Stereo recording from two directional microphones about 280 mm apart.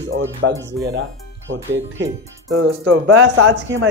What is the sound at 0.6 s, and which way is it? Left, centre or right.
Speech, centre.